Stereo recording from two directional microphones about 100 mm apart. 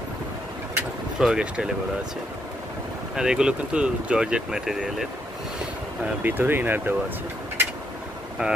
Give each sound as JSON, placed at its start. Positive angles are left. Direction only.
{"t": 1.2, "sound": "speech", "side_deg": -5}
{"t": 3.2, "sound": "speech", "side_deg": -10}
{"t": 6.0, "sound": "speech", "side_deg": -20}
{"t": 8.4, "sound": "speech", "side_deg": -10}